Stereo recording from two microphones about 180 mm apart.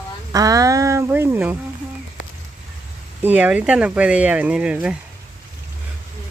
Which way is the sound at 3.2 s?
10° right (ahead or behind).